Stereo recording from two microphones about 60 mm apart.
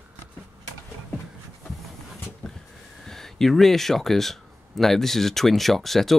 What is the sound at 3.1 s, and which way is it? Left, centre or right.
Speech, centre.